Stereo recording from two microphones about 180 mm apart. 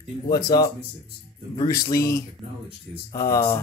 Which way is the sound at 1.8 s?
15° left (ahead or behind).